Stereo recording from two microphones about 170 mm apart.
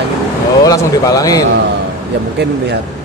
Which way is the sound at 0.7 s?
20° left (ahead or behind).